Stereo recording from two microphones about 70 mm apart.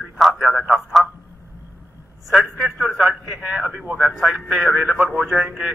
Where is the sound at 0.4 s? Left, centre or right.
Centre.